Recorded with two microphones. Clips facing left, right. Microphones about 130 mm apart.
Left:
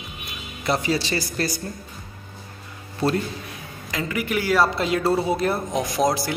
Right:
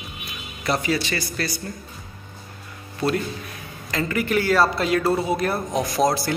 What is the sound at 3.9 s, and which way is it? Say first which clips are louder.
A man's voice: right 3 dB; 10° left (ahead or behind).